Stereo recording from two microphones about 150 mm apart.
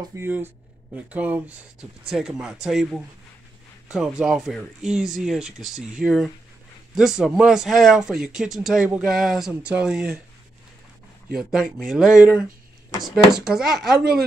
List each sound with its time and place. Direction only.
0.0 s speech: 20° right (ahead or behind)
11.3 s speech: 5° right (ahead or behind)